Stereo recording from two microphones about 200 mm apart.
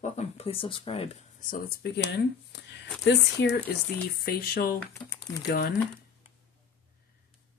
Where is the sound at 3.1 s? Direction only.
55° left (ahead or behind).